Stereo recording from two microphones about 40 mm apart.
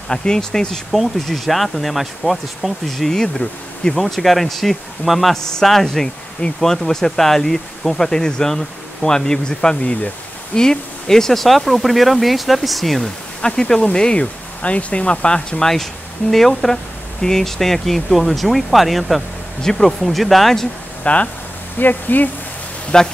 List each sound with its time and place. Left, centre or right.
0.1 s speech: centre
1.2 s speech: centre
2.9 s speech: centre
5.3 s speech: centre
13.4 s speech: centre
14.1 s speech: left
15.6 s speech: centre
19.6 s speech: centre
21.0 s speech: left
21.7 s speech: left
22.9 s speech: centre